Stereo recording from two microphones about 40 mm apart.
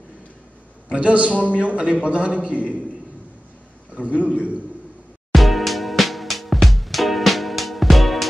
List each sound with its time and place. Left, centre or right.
0.8 s a man's voice: right
3.9 s a man's voice: right
5.3 s music: centre